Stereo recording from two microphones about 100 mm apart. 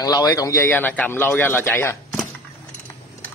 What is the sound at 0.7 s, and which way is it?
Speech, 20° left (ahead or behind).